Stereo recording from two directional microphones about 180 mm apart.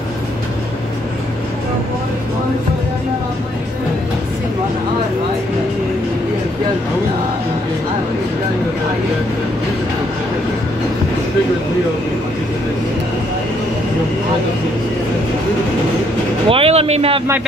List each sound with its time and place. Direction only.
16.4 s speech: 30° right (ahead or behind)